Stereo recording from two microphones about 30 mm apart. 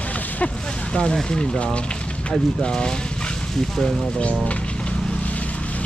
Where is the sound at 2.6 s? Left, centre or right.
Left.